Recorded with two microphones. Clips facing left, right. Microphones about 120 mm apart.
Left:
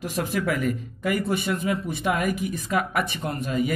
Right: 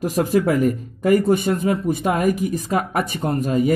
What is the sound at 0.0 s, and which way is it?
Speech, 40° right (ahead or behind).